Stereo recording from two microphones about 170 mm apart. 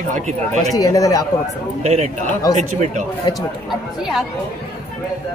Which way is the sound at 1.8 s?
40° right (ahead or behind).